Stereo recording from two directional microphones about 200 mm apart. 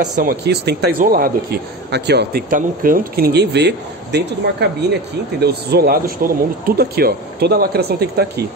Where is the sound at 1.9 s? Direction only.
55° right (ahead or behind).